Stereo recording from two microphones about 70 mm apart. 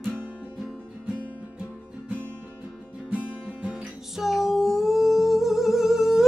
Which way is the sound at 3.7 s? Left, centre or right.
Centre.